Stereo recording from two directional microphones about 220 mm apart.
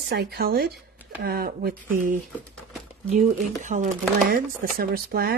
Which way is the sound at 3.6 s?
35° right (ahead or behind).